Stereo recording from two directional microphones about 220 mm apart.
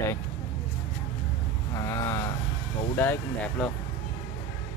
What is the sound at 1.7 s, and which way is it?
Speech, 15° left (ahead or behind).